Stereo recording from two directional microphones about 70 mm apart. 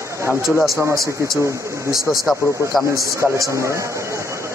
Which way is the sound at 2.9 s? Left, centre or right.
Right.